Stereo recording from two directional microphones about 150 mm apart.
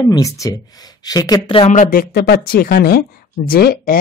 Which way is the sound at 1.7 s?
60° left (ahead or behind).